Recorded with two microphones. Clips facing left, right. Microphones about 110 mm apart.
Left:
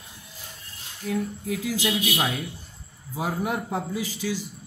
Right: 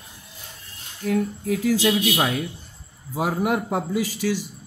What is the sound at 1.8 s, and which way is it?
Speech, 55° right (ahead or behind).